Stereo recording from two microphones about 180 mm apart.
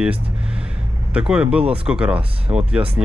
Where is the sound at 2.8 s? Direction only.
30° right (ahead or behind).